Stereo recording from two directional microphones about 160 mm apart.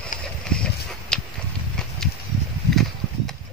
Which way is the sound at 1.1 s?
5° left (ahead or behind).